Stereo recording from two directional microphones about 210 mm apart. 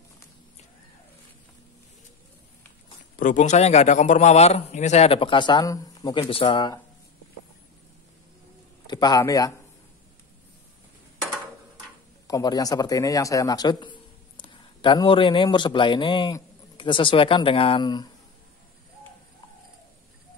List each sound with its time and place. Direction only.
3.2 s a man's voice: 35° left (ahead or behind)
8.8 s speech: 20° left (ahead or behind)
12.3 s a man's voice: 15° left (ahead or behind)